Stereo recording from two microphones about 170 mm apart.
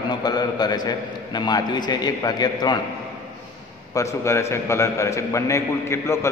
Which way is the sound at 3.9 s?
15° left (ahead or behind).